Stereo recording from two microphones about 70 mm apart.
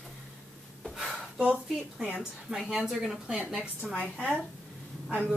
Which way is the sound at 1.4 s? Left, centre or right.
Centre.